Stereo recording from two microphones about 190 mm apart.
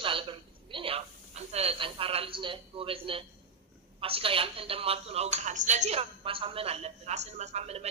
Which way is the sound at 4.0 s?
30° right (ahead or behind).